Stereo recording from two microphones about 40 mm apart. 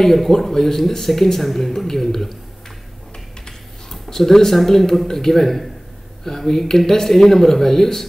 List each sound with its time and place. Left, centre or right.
0.0 s speech: centre
3.4 s speech: centre